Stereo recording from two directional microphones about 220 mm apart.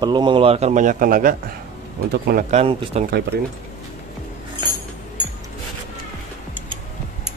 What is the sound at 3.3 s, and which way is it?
Speech, 50° right (ahead or behind).